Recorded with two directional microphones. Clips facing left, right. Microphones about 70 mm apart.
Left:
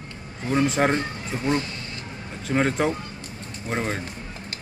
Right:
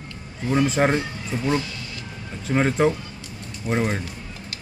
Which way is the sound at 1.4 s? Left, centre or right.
Left.